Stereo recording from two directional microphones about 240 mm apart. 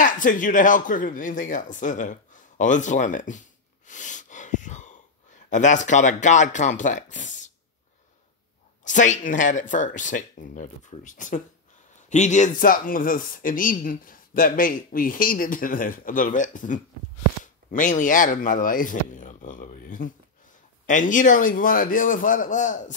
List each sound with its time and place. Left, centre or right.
0.0 s speech: left
8.8 s speech: left